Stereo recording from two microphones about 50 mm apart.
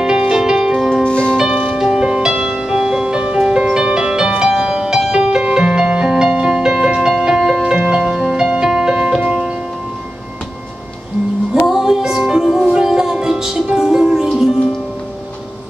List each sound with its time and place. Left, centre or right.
0.3 s music: centre
1.0 s music: left
1.3 s music: centre
9.2 s music: right
11.6 s music: centre